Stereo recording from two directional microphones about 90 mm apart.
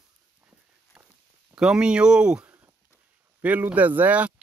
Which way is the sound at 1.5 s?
10° right (ahead or behind).